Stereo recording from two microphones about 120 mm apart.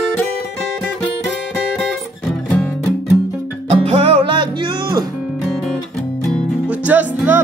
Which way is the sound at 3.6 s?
55° right (ahead or behind).